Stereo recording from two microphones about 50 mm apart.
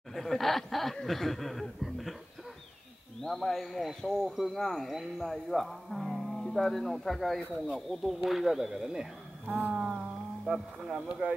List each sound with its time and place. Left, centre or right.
0.1 s speech: centre
3.2 s speech: centre
7.5 s speech: centre
9.5 s speech: right